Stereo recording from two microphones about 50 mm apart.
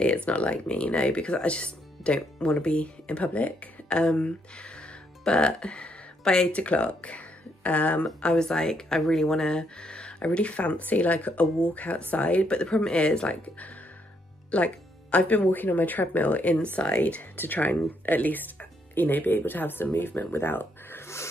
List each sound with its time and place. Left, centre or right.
0.0 s speech: left
14.5 s speech: left
17.4 s speech: left
20.3 s a sound: left